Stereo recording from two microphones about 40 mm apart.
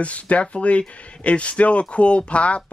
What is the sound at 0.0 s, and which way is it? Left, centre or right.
Speech, left.